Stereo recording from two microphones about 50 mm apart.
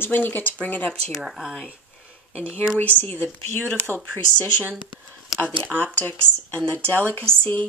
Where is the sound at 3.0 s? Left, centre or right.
Left.